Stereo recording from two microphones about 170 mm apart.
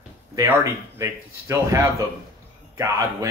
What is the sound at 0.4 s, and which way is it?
A man's voice, 15° right (ahead or behind).